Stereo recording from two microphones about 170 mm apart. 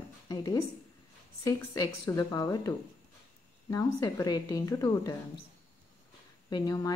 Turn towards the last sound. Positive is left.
turn(degrees=20)  # may be behind; listen again after turning